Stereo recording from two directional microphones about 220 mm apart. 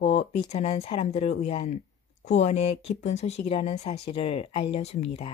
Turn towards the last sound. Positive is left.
turn(degrees=30)  # may be behind; listen again after turning